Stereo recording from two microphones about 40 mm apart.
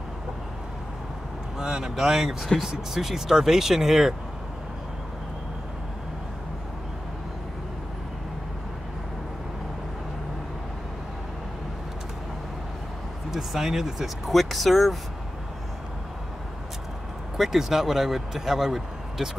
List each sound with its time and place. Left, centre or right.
1.6 s a man's voice: centre
13.3 s speech: centre
17.4 s a man's voice: centre